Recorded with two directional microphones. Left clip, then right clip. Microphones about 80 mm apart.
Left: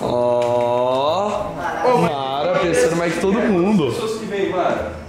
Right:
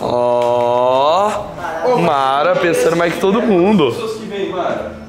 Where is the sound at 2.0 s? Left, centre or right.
Left.